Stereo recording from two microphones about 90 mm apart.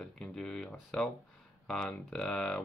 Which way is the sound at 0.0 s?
10° left (ahead or behind).